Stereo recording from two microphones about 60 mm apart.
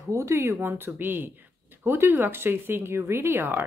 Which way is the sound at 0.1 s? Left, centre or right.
Right.